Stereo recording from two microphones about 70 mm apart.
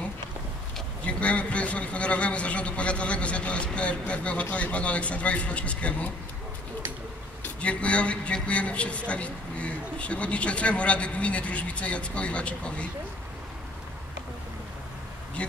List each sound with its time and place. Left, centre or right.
1.0 s a man's voice: centre
7.4 s a man's voice: centre